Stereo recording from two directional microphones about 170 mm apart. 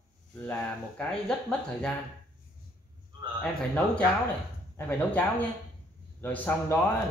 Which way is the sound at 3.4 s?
5° left (ahead or behind).